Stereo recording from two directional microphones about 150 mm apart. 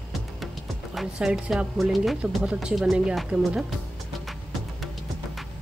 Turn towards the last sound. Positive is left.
turn(degrees=0)  # may be behind; listen again after turning